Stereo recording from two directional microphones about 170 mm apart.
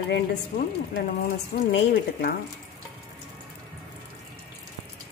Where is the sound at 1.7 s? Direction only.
75° left (ahead or behind).